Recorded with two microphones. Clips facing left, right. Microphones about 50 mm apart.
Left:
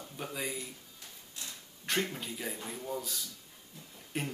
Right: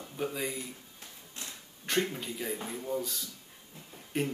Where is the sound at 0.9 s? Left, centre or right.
Right.